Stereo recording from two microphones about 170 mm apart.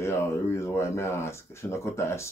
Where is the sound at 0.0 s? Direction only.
15° left (ahead or behind).